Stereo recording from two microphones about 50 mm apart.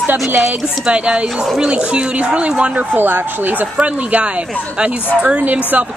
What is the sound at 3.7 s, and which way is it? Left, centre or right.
A woman's voice, right.